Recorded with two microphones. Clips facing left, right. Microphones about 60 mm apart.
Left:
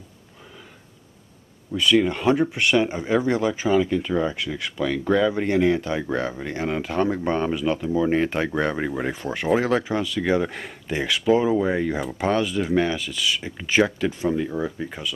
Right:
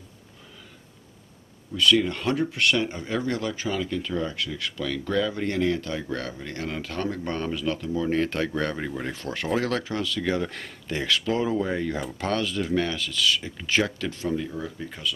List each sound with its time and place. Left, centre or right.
1.8 s speech: centre